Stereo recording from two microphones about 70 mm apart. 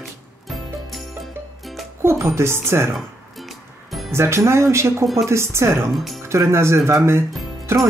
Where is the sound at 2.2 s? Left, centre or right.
Right.